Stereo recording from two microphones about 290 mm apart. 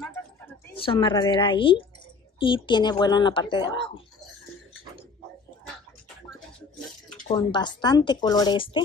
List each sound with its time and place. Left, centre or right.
0.0 s a sound: centre
0.7 s speech: centre
7.3 s speech: centre